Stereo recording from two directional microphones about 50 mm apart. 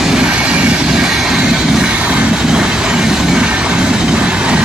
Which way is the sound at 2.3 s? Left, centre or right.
Centre.